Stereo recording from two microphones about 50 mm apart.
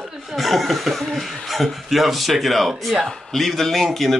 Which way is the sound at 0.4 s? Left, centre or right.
Centre.